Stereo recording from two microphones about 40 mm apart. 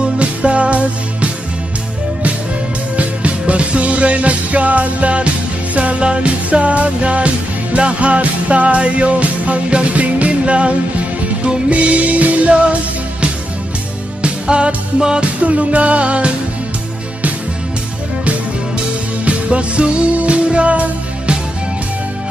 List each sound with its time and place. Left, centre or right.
0.2 s music: right
3.0 s music: right
14.2 s music: right
15.4 s music: right
19.2 s music: right